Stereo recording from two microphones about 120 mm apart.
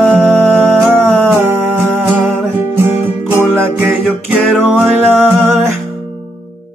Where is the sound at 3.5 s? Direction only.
15° right (ahead or behind).